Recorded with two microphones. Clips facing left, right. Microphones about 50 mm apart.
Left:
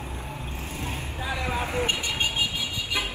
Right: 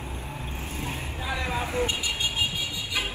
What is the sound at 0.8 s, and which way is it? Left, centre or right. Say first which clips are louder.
Vehicle: left 1 dB; centre.